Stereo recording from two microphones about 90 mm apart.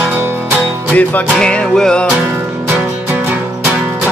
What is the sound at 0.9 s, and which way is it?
Music, 20° left (ahead or behind).